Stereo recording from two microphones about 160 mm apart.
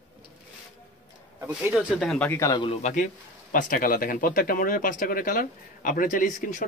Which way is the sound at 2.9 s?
55° left (ahead or behind).